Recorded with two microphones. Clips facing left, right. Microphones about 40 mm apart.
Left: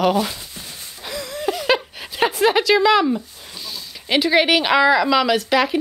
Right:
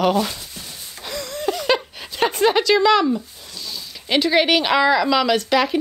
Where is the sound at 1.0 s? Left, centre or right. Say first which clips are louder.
Even; centre.